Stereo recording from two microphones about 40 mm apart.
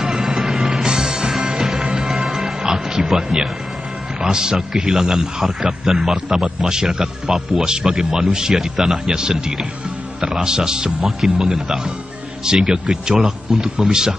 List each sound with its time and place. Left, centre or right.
0.2 s music: centre
4.2 s a man's voice: centre